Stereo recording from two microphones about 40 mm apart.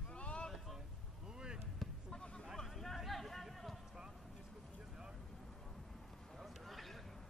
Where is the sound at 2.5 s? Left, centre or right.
Centre.